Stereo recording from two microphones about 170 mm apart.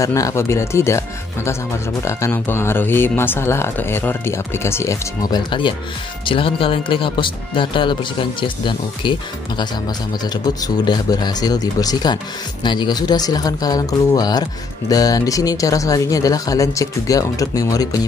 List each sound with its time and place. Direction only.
0.0 s speech: 20° left (ahead or behind)
10.3 s speech: 25° left (ahead or behind)